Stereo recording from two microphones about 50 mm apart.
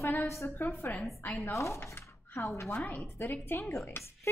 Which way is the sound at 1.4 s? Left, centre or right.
Left.